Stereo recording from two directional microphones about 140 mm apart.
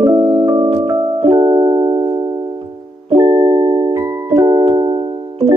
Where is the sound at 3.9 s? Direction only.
20° right (ahead or behind).